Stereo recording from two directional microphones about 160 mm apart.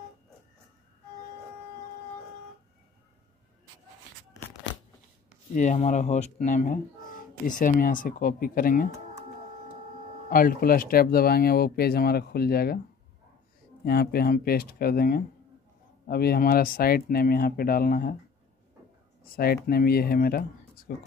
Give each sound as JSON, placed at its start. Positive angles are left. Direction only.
{"t": 5.5, "sound": "speech", "side_deg": 50}
{"t": 10.3, "sound": "speech", "side_deg": 65}
{"t": 13.8, "sound": "speech", "side_deg": 75}
{"t": 19.3, "sound": "speech", "side_deg": 70}